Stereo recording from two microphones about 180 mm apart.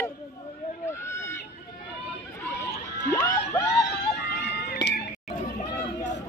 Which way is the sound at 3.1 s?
10° left (ahead or behind).